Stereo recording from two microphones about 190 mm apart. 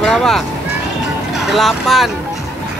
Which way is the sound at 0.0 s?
Centre (ahead or behind).